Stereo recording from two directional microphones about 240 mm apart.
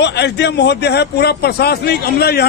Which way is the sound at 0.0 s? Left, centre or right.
Left.